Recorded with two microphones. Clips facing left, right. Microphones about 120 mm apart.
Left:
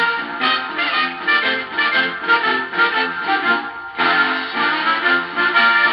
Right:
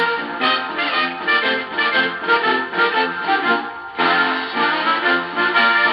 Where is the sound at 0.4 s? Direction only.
35° right (ahead or behind).